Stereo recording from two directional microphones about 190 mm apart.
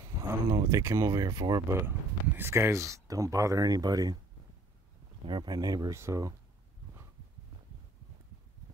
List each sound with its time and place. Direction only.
0.0 s speech: 20° right (ahead or behind)
5.2 s speech: 25° right (ahead or behind)